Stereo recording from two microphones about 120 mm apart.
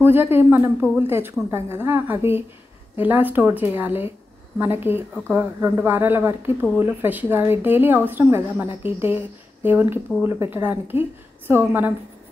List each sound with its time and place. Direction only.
0.0 s a woman's voice: 20° right (ahead or behind)